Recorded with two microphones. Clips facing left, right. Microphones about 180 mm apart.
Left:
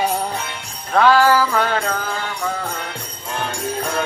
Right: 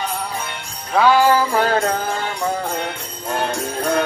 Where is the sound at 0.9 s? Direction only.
10° right (ahead or behind); by 1.8 s 30° right (ahead or behind).